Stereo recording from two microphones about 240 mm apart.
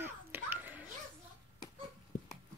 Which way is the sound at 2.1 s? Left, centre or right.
Left.